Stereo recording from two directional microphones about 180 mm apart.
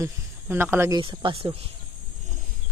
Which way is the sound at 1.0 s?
30° right (ahead or behind).